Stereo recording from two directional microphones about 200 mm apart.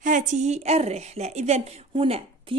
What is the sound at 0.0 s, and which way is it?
A woman's voice, 40° right (ahead or behind).